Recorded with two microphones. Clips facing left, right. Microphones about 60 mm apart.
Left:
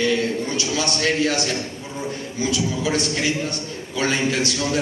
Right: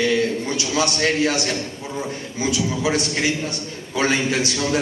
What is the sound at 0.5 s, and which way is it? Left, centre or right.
Speech, right.